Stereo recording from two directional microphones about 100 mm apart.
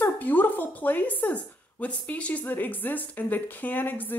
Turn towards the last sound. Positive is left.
turn(degrees=20)  # may be behind; listen again after turning